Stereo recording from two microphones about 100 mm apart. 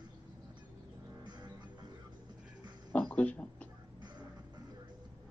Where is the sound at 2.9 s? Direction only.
15° left (ahead or behind).